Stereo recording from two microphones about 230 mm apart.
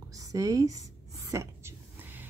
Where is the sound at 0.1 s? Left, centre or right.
Centre.